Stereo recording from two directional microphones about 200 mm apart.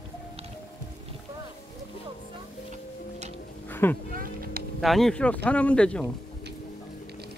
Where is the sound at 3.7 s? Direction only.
10° left (ahead or behind).